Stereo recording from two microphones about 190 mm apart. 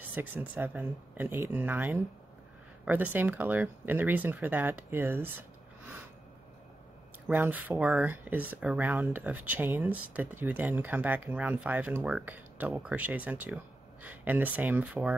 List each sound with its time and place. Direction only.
0.1 s speech: 10° right (ahead or behind)
7.2 s speech: 10° right (ahead or behind)